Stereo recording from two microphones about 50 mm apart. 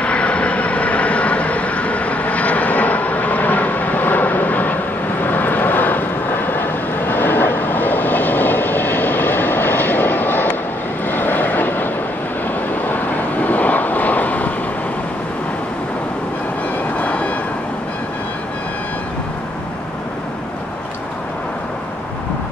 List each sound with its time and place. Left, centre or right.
0.0 s vehicle: left
16.9 s vehicle: left